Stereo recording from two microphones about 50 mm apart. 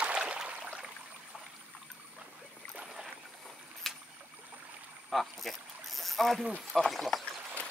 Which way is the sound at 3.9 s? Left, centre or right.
Centre.